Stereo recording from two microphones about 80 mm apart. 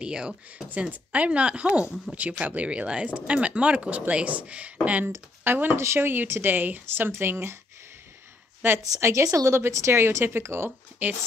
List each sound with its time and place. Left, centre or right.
0.0 s speech: centre
0.7 s speech: centre
8.6 s speech: right
11.0 s speech: right